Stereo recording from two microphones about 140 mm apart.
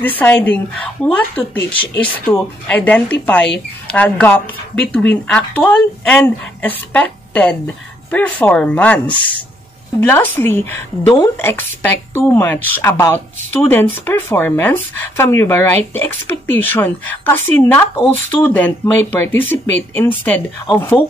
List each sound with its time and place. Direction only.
0.2 s speech: 15° left (ahead or behind)